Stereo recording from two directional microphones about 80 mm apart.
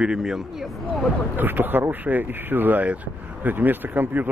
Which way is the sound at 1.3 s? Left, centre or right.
Right.